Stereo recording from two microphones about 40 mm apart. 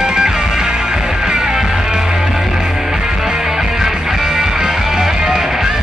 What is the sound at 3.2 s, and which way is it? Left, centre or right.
Music, centre.